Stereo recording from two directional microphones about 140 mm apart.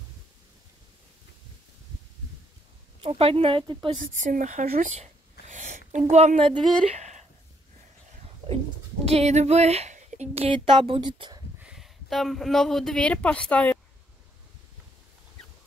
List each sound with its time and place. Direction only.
3.0 s speech: 45° right (ahead or behind)
4.0 s speech: 65° right (ahead or behind); by 6.5 s 50° right (ahead or behind)
6.9 s a sound: 55° right (ahead or behind)
9.0 s speech: 50° right (ahead or behind); by 11.4 s 30° right (ahead or behind)
11.6 s speech: 5° right (ahead or behind)